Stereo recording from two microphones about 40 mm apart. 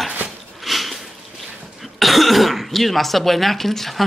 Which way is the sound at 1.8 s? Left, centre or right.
Centre.